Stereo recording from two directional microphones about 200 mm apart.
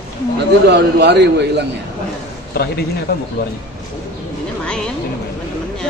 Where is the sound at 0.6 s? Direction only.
60° right (ahead or behind).